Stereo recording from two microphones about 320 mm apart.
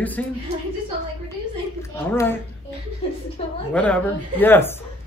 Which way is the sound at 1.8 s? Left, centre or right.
Centre.